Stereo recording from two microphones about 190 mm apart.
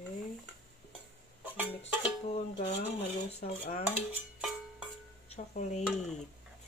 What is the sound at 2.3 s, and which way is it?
Speech, 30° left (ahead or behind).